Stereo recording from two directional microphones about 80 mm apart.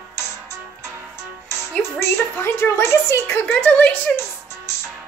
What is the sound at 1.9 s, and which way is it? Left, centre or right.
A woman's voice, left.